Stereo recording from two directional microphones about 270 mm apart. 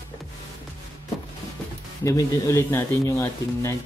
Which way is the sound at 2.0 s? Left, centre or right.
Centre.